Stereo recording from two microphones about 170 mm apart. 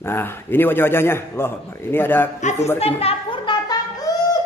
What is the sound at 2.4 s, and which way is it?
Speech, 45° left (ahead or behind).